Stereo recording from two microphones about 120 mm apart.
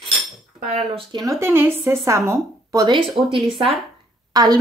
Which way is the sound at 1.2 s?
20° right (ahead or behind).